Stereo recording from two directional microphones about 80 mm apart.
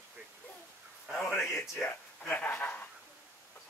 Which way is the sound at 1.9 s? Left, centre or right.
Left.